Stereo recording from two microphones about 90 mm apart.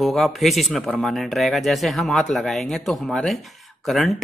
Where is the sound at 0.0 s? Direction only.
Centre (ahead or behind).